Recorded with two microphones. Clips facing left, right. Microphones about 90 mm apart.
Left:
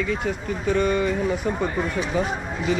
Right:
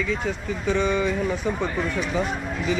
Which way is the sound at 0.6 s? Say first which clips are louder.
Left 1 dB; 90° right.